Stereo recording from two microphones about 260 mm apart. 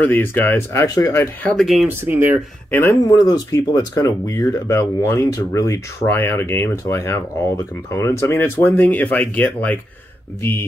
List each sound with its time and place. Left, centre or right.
0.0 s speech: centre
2.7 s speech: centre